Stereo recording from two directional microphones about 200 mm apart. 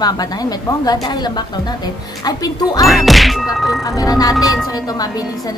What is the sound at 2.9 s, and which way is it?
Music, centre (ahead or behind).